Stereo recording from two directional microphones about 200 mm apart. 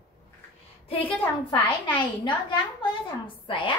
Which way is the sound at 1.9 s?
25° left (ahead or behind).